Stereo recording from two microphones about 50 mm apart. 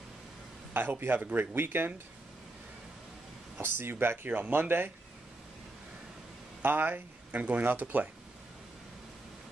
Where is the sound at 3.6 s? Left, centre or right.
Right.